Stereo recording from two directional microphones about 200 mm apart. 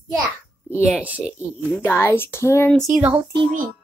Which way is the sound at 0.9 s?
5° right (ahead or behind).